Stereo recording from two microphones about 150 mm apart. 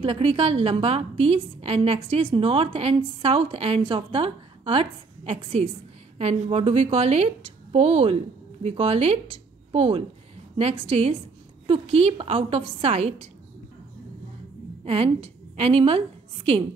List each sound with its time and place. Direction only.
0.0 s a woman's voice: 40° right (ahead or behind)
14.9 s a woman's voice: 40° right (ahead or behind)